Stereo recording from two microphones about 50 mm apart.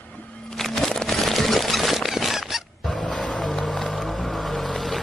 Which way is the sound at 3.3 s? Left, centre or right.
Centre.